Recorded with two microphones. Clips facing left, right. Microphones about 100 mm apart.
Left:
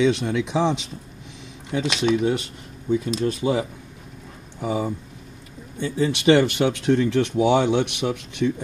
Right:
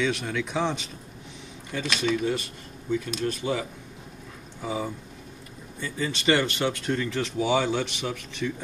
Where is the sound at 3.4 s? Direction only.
25° left (ahead or behind).